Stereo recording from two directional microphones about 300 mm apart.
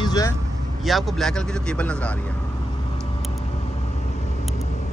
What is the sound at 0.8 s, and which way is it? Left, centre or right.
A man's voice, centre.